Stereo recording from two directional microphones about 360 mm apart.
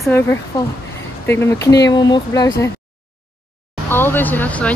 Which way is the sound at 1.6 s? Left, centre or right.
Centre.